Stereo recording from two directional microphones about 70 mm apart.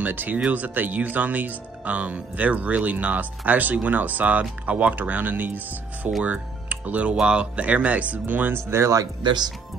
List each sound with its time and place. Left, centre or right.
0.0 s speech: right
8.5 s speech: right